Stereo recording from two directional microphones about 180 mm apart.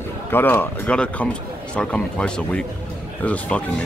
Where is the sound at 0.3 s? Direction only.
10° left (ahead or behind).